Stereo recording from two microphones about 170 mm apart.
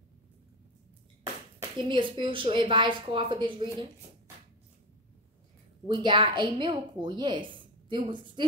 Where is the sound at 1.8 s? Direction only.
30° right (ahead or behind).